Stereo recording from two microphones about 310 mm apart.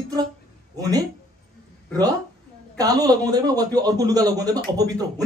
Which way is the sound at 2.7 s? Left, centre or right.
Centre.